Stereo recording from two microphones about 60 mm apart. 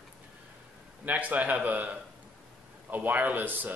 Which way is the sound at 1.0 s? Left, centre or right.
Right.